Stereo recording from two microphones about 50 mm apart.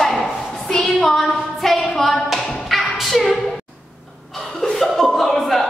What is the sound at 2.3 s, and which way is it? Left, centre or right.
Music, centre.